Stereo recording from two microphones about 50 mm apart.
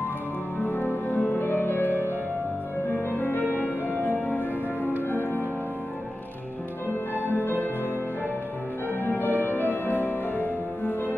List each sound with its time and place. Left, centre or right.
0.7 s music: left
3.1 s music: left
6.9 s music: left
9.0 s music: left